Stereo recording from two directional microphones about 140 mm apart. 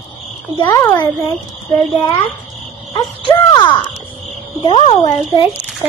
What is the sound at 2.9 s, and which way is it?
A child's voice, 30° left (ahead or behind).